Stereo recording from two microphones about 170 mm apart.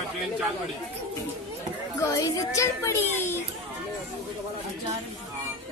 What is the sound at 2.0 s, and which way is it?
A woman's voice, 20° left (ahead or behind).